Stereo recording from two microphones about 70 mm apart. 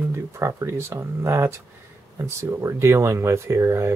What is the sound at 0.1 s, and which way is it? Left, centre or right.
Speech, right.